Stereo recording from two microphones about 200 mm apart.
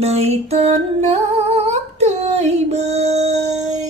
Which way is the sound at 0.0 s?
30° right (ahead or behind).